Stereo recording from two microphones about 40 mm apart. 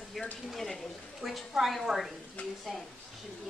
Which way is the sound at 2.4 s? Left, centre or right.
Left.